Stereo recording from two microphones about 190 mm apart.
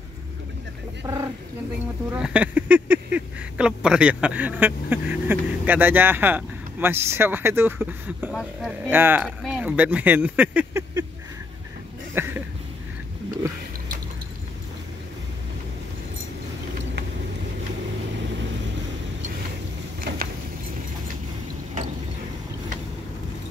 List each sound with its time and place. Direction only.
1.0 s speech: 20° right (ahead or behind)
2.1 s speech: 5° right (ahead or behind)
12.1 s a sound: 10° right (ahead or behind)